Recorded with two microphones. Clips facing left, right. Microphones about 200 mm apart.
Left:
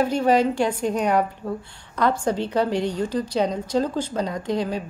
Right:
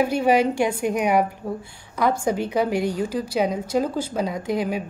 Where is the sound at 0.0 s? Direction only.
10° right (ahead or behind).